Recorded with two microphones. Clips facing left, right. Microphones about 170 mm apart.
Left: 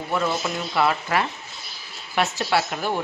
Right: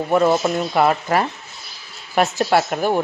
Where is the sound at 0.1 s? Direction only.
50° right (ahead or behind).